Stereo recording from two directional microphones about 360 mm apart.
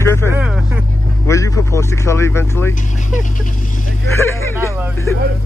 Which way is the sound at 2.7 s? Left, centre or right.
Left.